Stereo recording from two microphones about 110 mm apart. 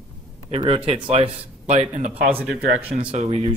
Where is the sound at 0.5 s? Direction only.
60° right (ahead or behind); by 2.1 s 90° right.